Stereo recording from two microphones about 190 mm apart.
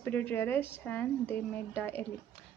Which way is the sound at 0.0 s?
10° left (ahead or behind).